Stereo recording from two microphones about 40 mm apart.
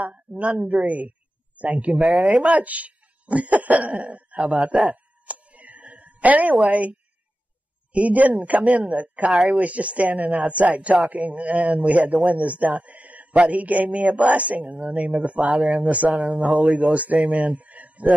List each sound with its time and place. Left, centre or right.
0.1 s a man's voice: right
2.6 s speech: right
3.9 s speech: right
4.9 s a sound: right
6.7 s a man's voice: right
15.4 s speech: centre
15.7 s a man's voice: right